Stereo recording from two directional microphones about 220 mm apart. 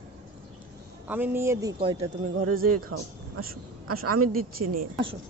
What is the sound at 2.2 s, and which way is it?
A man's voice, 75° right (ahead or behind).